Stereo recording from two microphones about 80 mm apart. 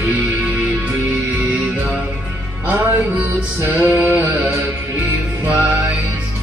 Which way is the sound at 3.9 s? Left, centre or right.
Right.